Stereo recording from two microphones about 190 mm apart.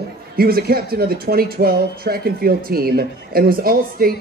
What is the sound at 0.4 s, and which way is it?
Speech, 50° right (ahead or behind).